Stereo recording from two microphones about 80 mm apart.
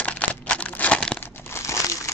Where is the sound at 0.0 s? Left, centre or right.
Centre.